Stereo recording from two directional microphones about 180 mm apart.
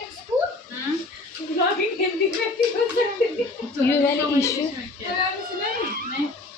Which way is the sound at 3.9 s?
15° left (ahead or behind).